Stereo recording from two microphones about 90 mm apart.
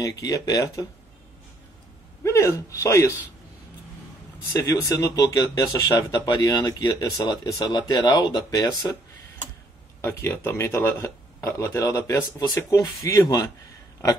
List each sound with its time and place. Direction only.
0.0 s speech: 40° left (ahead or behind)
2.2 s a man's voice: 35° left (ahead or behind)
4.6 s speech: 40° left (ahead or behind)
10.0 s speech: 30° left (ahead or behind)